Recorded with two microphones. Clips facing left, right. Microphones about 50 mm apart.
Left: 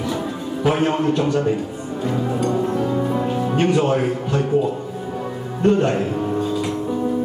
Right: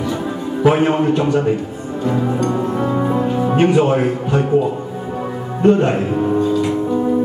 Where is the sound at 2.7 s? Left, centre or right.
Right.